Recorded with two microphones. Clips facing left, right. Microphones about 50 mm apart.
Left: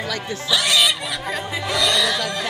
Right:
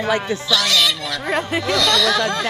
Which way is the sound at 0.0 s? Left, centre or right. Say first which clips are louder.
Right 7 dB; right.